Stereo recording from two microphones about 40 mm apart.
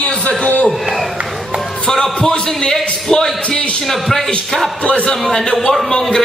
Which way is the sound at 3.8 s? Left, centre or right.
Centre.